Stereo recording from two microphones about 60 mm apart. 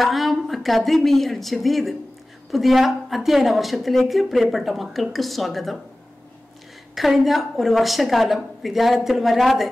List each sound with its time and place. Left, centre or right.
0.0 s a woman's voice: centre
7.0 s a woman's voice: centre